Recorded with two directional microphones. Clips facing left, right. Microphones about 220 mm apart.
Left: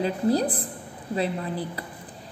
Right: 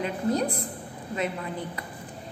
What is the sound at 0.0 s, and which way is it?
A woman's voice, 35° left (ahead or behind).